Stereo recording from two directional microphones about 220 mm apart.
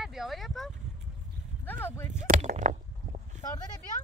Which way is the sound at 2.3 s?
35° right (ahead or behind).